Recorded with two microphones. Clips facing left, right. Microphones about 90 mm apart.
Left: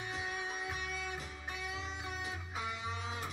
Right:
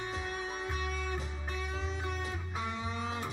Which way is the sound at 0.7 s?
5° left (ahead or behind).